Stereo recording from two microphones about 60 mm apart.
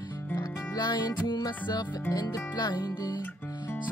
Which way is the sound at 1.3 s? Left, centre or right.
Left.